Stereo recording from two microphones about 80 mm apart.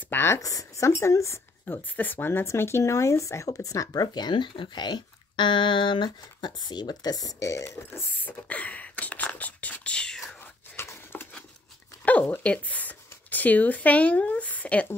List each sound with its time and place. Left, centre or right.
0.1 s speech: left
0.4 s speech: left
1.8 s speech: left
8.2 s speech: centre
10.8 s a sound: left
12.0 s speech: centre